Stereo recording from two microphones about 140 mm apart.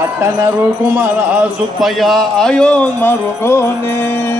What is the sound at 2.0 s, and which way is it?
Music, centre (ahead or behind).